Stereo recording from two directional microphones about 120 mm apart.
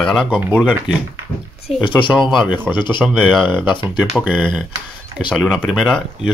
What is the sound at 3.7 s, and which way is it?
Speech, 40° left (ahead or behind).